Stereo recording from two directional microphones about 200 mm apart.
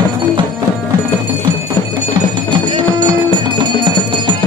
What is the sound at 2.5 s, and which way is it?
Music, 25° right (ahead or behind).